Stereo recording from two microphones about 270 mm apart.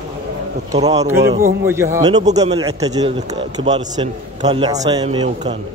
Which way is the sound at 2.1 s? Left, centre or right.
Right.